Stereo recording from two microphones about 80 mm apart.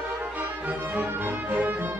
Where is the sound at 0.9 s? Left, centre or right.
Right.